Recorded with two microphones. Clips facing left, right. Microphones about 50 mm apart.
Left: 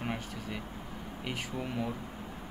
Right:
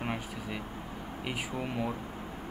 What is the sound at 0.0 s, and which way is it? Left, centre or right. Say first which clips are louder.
Vehicle: right 1 dB; centre.